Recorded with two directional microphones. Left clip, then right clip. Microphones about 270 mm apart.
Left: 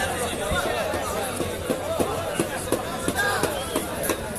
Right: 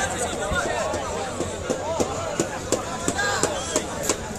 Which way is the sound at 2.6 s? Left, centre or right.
Left.